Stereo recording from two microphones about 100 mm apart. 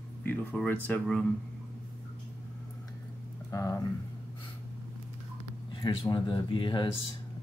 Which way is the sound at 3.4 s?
30° left (ahead or behind).